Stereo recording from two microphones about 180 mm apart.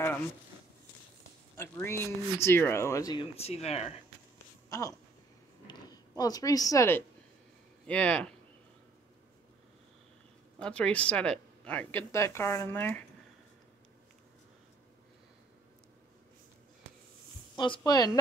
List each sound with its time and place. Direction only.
1.6 s speech: 15° left (ahead or behind)
3.3 s speech: 35° left (ahead or behind)
4.6 s speech: 20° left (ahead or behind)
10.6 s speech: 5° left (ahead or behind)
17.6 s speech: 25° left (ahead or behind)